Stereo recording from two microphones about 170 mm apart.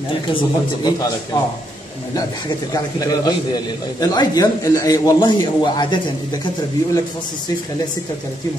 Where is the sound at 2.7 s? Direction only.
20° left (ahead or behind).